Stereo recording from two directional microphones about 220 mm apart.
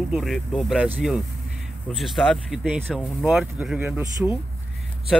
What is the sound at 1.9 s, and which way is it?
Speech, centre (ahead or behind).